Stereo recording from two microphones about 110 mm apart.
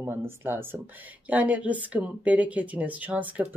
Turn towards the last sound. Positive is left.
turn(degrees=-15)  # may be behind; listen again after turning